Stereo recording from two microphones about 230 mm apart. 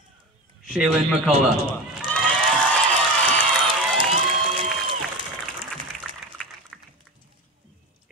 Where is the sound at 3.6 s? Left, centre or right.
Right.